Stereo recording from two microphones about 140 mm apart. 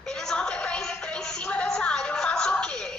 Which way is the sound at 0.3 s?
5° left (ahead or behind).